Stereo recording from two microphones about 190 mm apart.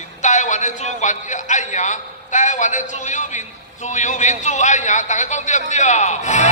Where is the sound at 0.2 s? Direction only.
40° left (ahead or behind).